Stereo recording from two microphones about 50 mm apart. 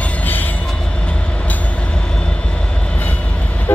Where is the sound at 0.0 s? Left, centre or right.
Left.